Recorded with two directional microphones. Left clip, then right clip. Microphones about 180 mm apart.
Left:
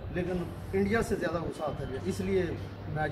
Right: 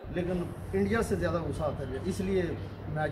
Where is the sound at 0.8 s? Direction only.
10° left (ahead or behind).